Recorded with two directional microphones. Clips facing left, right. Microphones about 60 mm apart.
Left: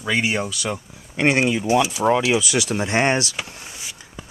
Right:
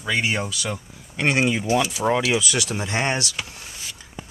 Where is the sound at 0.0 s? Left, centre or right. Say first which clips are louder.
Left 2 dB; centre.